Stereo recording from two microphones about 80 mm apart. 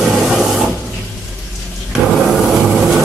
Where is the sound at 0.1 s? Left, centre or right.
Centre.